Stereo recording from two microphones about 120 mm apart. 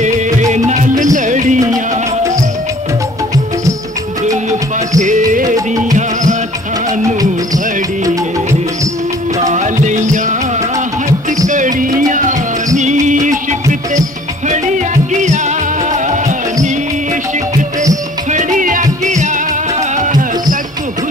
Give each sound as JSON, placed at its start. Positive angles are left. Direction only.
{"t": 0.0, "sound": "music", "side_deg": -85}
{"t": 4.5, "sound": "music", "side_deg": -90}
{"t": 7.2, "sound": "music", "side_deg": -30}
{"t": 9.5, "sound": "music", "side_deg": -90}
{"t": 11.4, "sound": "music", "side_deg": -90}
{"t": 12.7, "sound": "music", "side_deg": -90}
{"t": 15.2, "sound": "music", "side_deg": -85}
{"t": 18.3, "sound": "music", "side_deg": -90}